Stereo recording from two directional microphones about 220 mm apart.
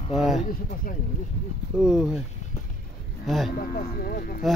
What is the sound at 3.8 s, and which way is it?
Speech, 45° left (ahead or behind).